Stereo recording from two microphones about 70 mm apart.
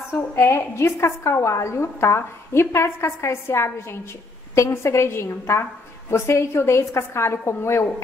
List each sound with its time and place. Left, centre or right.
0.1 s a woman's voice: left